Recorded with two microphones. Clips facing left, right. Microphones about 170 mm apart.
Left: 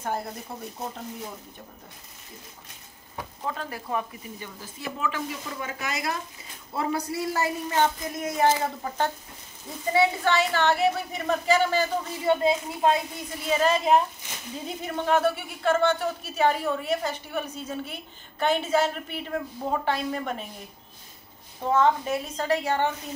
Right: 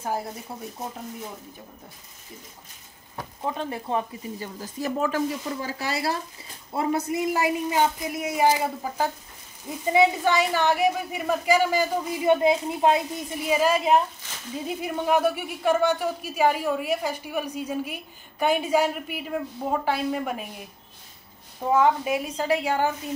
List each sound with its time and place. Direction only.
0.0 s speech: 5° right (ahead or behind)
3.4 s speech: 20° right (ahead or behind)
4.4 s speech: 40° right (ahead or behind); by 20.4 s 10° right (ahead or behind)
21.6 s speech: 10° right (ahead or behind)